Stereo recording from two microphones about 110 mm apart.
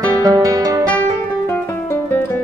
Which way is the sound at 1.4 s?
20° left (ahead or behind).